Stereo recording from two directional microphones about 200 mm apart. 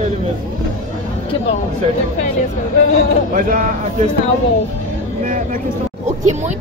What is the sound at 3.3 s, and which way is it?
Speech, 45° right (ahead or behind).